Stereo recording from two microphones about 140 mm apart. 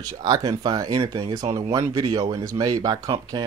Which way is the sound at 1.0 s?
45° right (ahead or behind).